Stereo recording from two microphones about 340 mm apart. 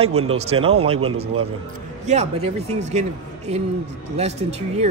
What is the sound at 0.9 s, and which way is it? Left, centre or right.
Speech, right.